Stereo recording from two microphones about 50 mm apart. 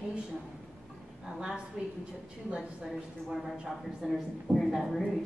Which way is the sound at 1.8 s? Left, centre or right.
Centre.